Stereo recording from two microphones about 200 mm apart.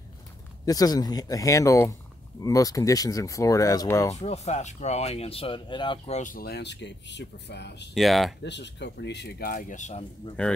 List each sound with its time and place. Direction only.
0.7 s speech: 20° left (ahead or behind)
4.1 s speech: 35° left (ahead or behind); by 7.9 s 60° left (ahead or behind)
7.9 s speech: centre (ahead or behind)
8.4 s speech: 60° left (ahead or behind); by 10.3 s 35° left (ahead or behind)